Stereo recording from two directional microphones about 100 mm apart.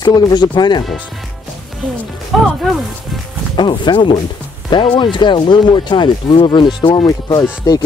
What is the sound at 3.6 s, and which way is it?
Speech, 50° left (ahead or behind).